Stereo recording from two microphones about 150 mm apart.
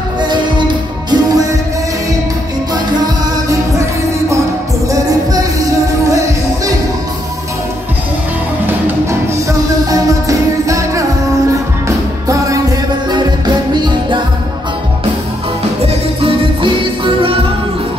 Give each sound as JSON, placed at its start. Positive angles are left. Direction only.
{"t": 0.2, "sound": "music", "side_deg": -30}
{"t": 4.8, "sound": "music", "side_deg": -25}
{"t": 9.8, "sound": "music", "side_deg": -20}
{"t": 15.8, "sound": "music", "side_deg": -40}